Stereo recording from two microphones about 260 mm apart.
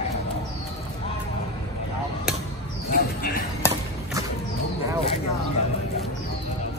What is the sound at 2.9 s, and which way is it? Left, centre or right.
Basketball bounce, left.